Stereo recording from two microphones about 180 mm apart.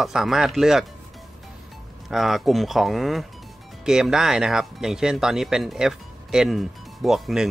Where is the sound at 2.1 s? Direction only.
Centre (ahead or behind).